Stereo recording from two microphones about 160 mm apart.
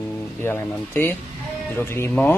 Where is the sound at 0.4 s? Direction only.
15° left (ahead or behind).